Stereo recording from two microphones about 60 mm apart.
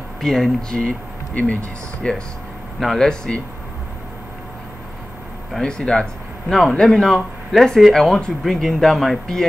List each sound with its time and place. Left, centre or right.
0.2 s speech: centre
1.3 s speech: left
2.0 s speech: centre
2.8 s speech: centre
5.5 s speech: centre